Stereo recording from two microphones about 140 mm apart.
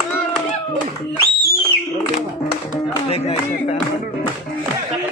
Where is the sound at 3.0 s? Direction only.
45° left (ahead or behind).